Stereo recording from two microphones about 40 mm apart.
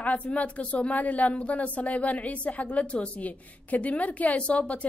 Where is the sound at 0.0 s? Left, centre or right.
Left.